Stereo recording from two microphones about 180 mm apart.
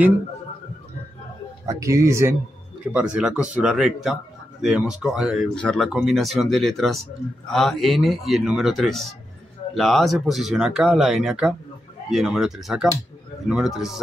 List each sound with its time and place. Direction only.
1.7 s speech: 20° right (ahead or behind)
2.9 s speech: 5° right (ahead or behind)